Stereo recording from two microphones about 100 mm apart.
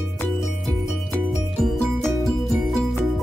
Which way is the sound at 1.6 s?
5° left (ahead or behind).